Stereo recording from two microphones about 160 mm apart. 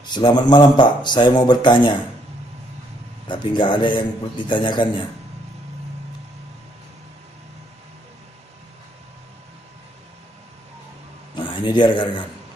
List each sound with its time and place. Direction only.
0.0 s speech: 30° left (ahead or behind)
3.3 s speech: 30° left (ahead or behind)
11.3 s a sound: 30° left (ahead or behind)